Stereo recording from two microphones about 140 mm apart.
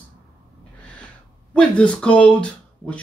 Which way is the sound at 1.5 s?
10° left (ahead or behind).